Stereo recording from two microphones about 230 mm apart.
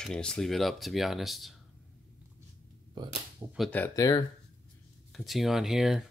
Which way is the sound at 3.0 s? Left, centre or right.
Centre.